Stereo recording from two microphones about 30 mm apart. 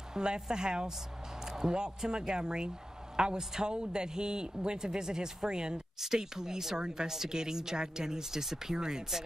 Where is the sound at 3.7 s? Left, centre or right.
Right.